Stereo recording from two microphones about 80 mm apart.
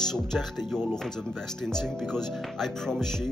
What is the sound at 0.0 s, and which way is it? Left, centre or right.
Speech, centre.